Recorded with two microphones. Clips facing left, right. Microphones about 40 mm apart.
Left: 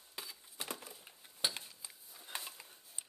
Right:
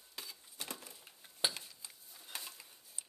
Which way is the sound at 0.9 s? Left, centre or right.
Centre.